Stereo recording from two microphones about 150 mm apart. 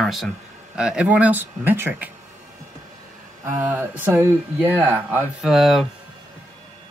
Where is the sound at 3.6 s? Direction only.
15° right (ahead or behind).